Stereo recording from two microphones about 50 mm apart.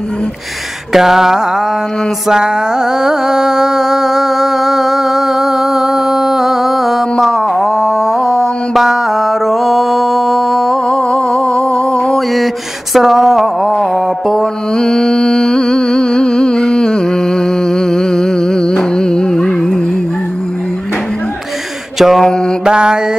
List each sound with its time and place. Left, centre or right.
0.9 s a sound: centre
2.2 s music: centre
12.9 s music: centre
14.8 s music: centre
21.9 s mantra: centre
22.7 s mantra: centre